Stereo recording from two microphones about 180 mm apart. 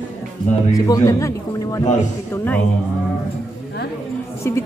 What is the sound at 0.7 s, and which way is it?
A man's voice, 20° left (ahead or behind).